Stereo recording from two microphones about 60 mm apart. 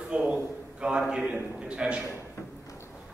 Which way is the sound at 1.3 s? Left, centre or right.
Centre.